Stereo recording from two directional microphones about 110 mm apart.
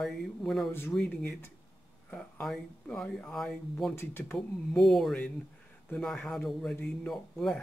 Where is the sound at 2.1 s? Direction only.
5° left (ahead or behind).